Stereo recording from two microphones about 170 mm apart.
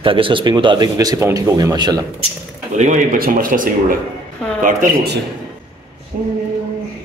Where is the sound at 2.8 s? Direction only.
50° right (ahead or behind).